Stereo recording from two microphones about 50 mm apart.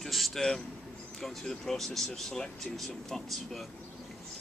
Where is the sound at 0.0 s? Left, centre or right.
Centre.